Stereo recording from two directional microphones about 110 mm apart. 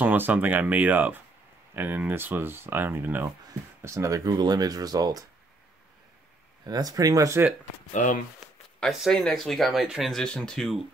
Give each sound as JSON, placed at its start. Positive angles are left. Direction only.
{"t": 0.0, "sound": "speech", "side_deg": -15}
{"t": 6.6, "sound": "speech", "side_deg": -35}
{"t": 8.7, "sound": "speech", "side_deg": 5}
{"t": 10.1, "sound": "speech", "side_deg": 10}